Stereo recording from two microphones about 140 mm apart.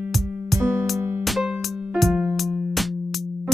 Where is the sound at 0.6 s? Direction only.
15° right (ahead or behind).